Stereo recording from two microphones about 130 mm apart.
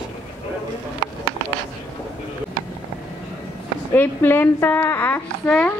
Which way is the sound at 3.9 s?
15° left (ahead or behind).